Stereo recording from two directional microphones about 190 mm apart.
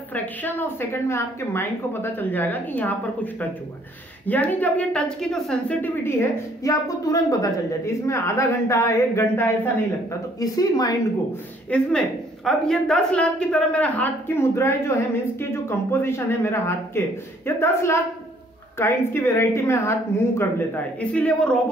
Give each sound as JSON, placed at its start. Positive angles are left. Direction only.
{"t": 0.1, "sound": "a woman's voice", "side_deg": 10}
{"t": 11.7, "sound": "a woman's voice", "side_deg": 5}